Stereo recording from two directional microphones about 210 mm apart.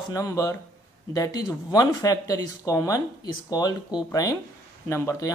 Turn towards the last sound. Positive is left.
turn(degrees=15)  # may be behind; listen again after turning